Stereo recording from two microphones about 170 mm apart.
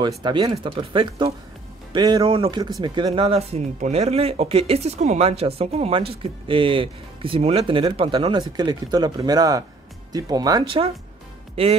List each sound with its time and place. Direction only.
0.0 s speech: 25° right (ahead or behind)